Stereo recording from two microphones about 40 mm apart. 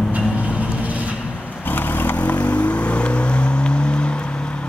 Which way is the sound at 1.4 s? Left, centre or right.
Left.